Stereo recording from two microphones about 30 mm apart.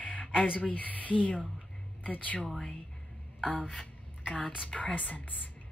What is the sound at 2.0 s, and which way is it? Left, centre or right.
Speech, left.